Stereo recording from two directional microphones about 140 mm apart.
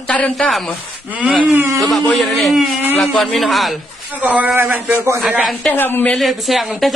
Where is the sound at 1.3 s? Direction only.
10° right (ahead or behind).